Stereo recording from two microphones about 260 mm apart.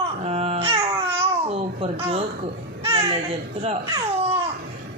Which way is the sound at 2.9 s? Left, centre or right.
Right.